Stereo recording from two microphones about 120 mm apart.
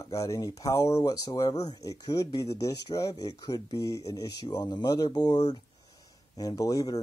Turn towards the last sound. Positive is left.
turn(degrees=30)  # may be behind; listen again after turning